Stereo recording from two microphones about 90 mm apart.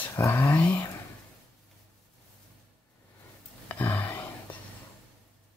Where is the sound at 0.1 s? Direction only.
35° left (ahead or behind).